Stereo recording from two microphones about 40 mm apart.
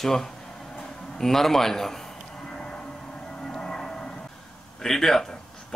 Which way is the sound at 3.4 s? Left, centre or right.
Centre.